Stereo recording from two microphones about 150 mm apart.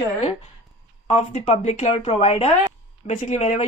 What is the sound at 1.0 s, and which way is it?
A woman's voice, 45° left (ahead or behind).